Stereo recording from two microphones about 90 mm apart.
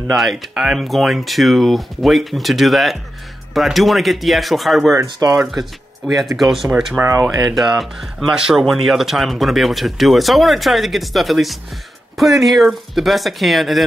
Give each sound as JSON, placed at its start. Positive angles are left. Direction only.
{"t": 0.1, "sound": "speech", "side_deg": 0}
{"t": 5.0, "sound": "speech", "side_deg": -45}
{"t": 5.5, "sound": "speech", "side_deg": 0}
{"t": 7.0, "sound": "speech", "side_deg": -30}
{"t": 7.4, "sound": "speech", "side_deg": -5}